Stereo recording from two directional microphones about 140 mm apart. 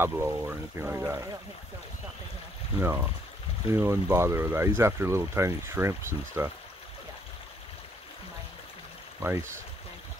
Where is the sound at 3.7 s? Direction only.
20° right (ahead or behind).